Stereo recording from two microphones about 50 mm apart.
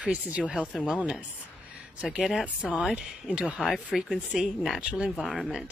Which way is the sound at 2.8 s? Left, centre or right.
Centre.